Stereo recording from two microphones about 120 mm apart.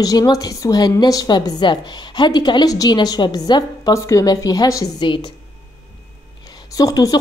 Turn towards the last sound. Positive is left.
turn(degrees=30)  # may be behind; listen again after turning